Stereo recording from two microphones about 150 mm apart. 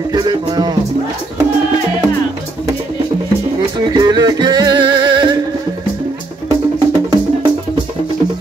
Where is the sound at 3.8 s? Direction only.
25° right (ahead or behind).